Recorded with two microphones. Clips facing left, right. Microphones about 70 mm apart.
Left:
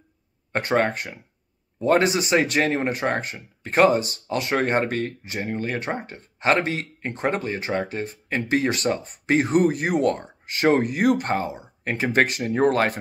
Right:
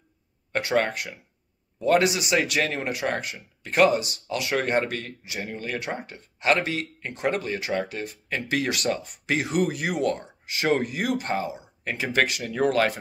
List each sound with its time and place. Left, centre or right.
0.5 s speech: left